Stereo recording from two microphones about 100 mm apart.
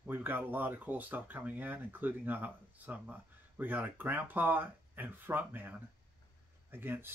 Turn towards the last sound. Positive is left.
turn(degrees=-20)  # may be behind; listen again after turning